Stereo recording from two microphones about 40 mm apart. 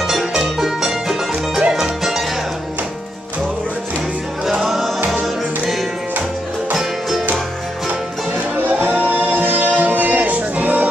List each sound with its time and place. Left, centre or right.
0.0 s music: centre
4.5 s music: centre
8.7 s music: right